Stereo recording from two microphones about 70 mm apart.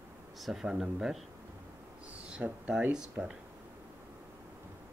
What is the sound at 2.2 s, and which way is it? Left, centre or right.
Speech, centre.